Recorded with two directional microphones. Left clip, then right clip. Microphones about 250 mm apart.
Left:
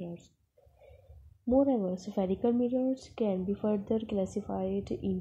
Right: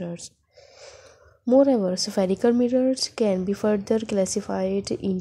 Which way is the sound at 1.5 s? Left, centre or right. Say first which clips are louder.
Right 9 dB; right.